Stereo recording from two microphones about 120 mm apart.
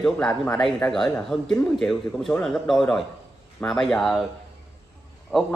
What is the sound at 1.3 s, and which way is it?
Speech, 5° left (ahead or behind).